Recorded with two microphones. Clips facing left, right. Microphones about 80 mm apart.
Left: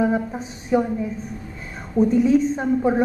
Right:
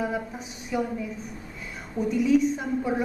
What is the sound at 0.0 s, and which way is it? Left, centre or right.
Speech, left.